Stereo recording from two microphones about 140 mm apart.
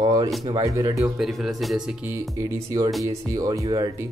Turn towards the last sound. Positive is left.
turn(degrees=-30)  # may be behind; listen again after turning